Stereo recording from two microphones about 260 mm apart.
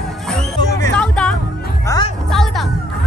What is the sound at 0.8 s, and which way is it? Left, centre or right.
Music, centre.